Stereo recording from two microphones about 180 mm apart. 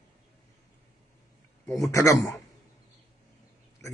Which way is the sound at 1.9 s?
15° left (ahead or behind).